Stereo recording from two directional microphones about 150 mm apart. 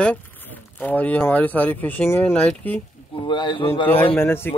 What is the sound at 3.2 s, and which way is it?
Speech, 30° left (ahead or behind).